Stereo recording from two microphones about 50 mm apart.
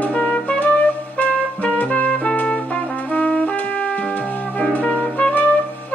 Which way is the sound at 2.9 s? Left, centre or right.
Left.